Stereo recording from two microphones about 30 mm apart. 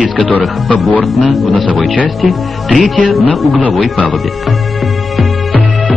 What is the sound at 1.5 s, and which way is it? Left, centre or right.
Speech, left.